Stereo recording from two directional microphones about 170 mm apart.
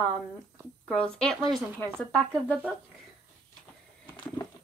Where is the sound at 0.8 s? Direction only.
5° left (ahead or behind).